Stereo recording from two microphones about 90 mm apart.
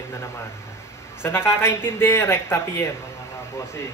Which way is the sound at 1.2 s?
25° left (ahead or behind).